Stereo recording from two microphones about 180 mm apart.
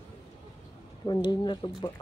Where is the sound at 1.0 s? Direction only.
25° left (ahead or behind).